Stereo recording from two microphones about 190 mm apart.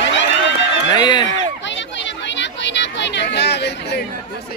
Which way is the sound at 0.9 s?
20° left (ahead or behind).